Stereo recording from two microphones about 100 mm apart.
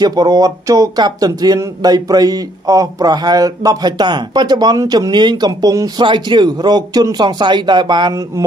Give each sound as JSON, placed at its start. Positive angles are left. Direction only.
{"t": 0.0, "sound": "speech", "side_deg": -40}
{"t": 6.0, "sound": "speech", "side_deg": -50}